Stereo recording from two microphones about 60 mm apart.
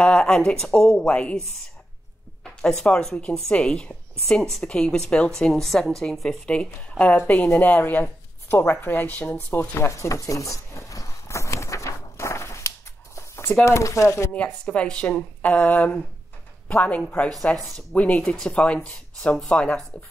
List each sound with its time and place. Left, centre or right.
0.0 s a sound: centre
0.5 s a woman's voice: centre
2.4 s a woman's voice: centre; by 9.4 s left
9.5 s speech: left
9.9 s a sound: left
13.7 s speech: left
14.3 s a woman's voice: left